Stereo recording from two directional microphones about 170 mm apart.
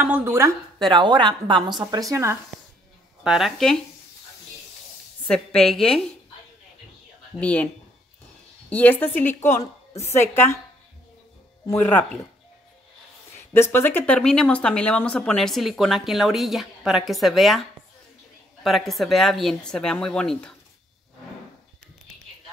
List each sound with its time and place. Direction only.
0.0 s speech: 10° right (ahead or behind)
0.7 s a woman's voice: 25° right (ahead or behind)
3.3 s speech: centre (ahead or behind)
5.2 s a woman's voice: 5° left (ahead or behind)
7.3 s a woman's voice: 5° left (ahead or behind)
11.6 s a woman's voice: 15° left (ahead or behind)
13.5 s speech: 15° left (ahead or behind)